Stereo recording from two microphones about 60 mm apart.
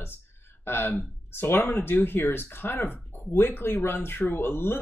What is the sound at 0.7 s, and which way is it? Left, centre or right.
Speech, left.